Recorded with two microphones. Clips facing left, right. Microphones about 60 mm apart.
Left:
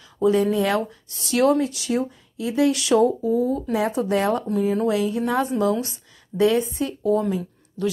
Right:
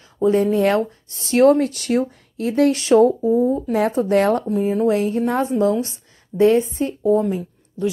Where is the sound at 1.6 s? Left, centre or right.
Right.